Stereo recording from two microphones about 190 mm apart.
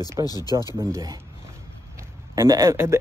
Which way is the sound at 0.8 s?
15° right (ahead or behind).